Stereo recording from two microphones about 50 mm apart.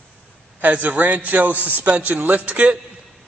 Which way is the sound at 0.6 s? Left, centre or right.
Right.